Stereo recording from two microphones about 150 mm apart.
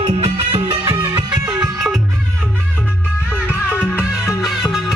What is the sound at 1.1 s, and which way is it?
Music, 15° right (ahead or behind).